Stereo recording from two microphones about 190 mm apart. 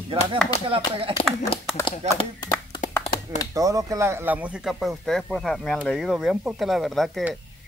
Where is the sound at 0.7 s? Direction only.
30° right (ahead or behind).